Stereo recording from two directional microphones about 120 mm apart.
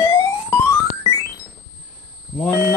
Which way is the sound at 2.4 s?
15° left (ahead or behind).